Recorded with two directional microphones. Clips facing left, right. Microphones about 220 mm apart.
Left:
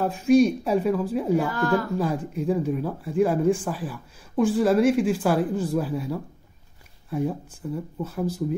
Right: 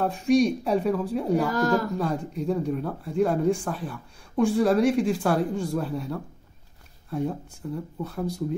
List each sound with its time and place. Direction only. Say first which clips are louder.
0.0 s speech: left 3 dB; centre (ahead or behind)
1.5 s a man's voice: even; 40° right (ahead or behind)
2.0 s speech: left 2 dB; 5° left (ahead or behind)